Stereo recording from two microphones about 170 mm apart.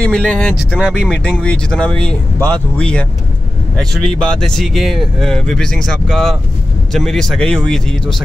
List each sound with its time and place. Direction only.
0.0 s speech: 5° left (ahead or behind)
0.7 s speech: 5° right (ahead or behind)